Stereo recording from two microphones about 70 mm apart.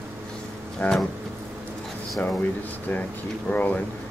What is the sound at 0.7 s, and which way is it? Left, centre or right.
Speech, centre.